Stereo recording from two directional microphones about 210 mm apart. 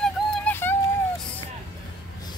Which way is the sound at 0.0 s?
5° left (ahead or behind).